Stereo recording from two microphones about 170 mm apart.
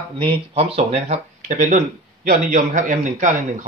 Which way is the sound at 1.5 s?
50° right (ahead or behind).